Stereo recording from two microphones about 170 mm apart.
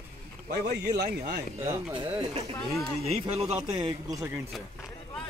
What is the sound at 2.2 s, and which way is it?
Speech, 35° right (ahead or behind).